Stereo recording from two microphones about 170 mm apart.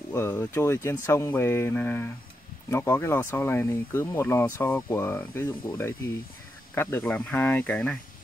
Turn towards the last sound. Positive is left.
turn(degrees=10)  # may be behind; listen again after turning